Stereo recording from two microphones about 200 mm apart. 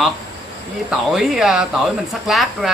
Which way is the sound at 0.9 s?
Centre (ahead or behind).